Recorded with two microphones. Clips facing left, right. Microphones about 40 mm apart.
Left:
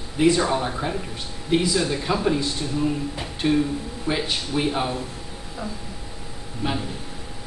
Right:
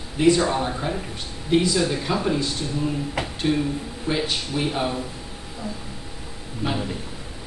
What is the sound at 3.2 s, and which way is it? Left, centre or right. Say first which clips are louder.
Music: right 5 dB; right.